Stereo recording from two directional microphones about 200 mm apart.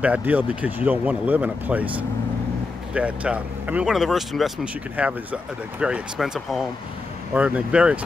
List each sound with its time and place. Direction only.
0.0 s speech: 5° right (ahead or behind)